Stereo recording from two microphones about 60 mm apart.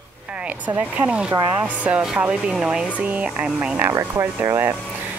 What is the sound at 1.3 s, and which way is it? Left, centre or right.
Speech, right.